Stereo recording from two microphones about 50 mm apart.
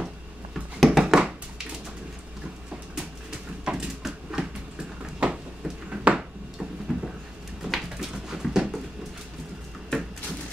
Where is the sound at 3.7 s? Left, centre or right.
Centre.